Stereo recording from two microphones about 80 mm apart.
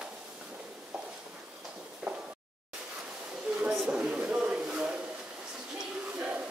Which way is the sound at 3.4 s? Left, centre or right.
Centre.